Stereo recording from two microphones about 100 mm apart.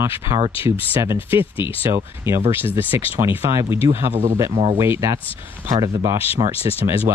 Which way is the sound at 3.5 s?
30° right (ahead or behind).